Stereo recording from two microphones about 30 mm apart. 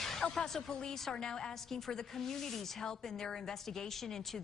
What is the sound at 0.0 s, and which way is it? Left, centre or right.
Music, centre.